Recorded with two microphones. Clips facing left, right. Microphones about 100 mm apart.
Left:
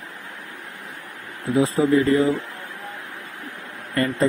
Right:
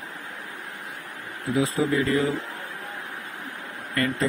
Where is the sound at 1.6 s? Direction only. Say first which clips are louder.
Left 6 dB; 35° left (ahead or behind).